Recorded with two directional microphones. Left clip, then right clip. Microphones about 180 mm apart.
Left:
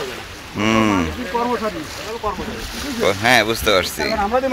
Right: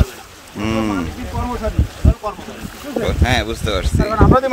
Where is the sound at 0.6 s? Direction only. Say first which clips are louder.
Left 4 dB; 5° right (ahead or behind).